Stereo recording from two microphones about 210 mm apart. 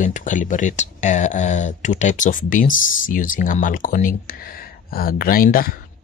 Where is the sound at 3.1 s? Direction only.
40° left (ahead or behind).